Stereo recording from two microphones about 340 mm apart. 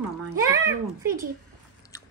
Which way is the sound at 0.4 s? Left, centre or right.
Centre.